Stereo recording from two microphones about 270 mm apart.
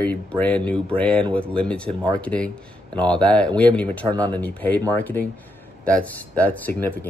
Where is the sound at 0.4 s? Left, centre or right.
Centre.